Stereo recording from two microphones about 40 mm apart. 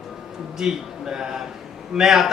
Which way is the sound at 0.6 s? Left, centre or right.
Centre.